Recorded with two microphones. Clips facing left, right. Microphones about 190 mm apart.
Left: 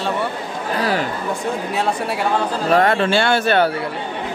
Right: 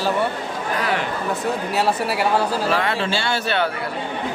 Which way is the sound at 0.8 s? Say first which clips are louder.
Left 4 dB; 35° left (ahead or behind).